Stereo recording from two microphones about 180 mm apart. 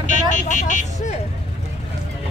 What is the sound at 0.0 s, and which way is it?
Vehicle, 45° left (ahead or behind).